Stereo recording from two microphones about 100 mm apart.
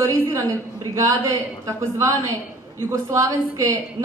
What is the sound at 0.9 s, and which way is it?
A woman's voice, 35° right (ahead or behind).